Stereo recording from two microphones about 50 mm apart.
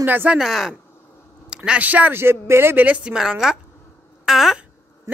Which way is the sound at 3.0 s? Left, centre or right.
Centre.